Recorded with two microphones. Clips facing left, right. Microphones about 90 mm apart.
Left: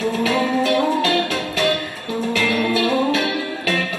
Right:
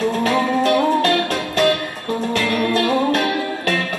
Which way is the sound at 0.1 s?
45° right (ahead or behind).